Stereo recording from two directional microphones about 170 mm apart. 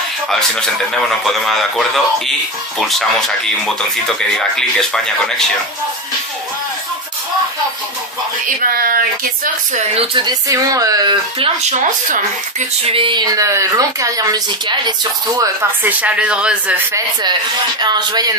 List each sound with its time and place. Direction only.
0.3 s a man's voice: 5° left (ahead or behind)
8.5 s speech: 60° right (ahead or behind)
9.9 s a woman's voice: 25° right (ahead or behind)
11.8 s speech: 45° right (ahead or behind)
12.9 s a woman's voice: 30° right (ahead or behind)
16.0 s speech: 5° right (ahead or behind)
16.9 s a woman's voice: 25° right (ahead or behind)